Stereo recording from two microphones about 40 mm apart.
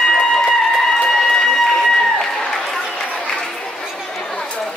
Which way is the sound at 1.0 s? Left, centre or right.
Centre.